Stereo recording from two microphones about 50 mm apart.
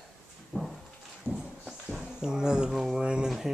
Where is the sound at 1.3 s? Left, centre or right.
Centre.